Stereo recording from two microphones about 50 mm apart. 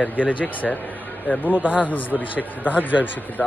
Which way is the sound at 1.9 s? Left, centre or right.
Left.